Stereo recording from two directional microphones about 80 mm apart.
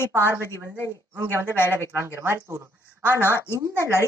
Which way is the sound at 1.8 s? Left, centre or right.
Right.